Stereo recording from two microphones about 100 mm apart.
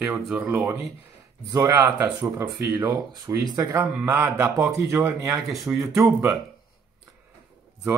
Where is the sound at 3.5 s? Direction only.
25° right (ahead or behind).